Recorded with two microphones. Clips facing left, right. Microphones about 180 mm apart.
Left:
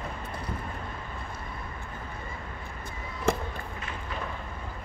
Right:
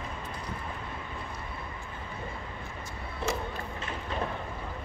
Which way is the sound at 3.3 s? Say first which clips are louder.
Left 6 dB; 55° left (ahead or behind).